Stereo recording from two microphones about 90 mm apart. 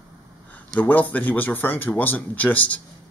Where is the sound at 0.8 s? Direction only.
20° left (ahead or behind).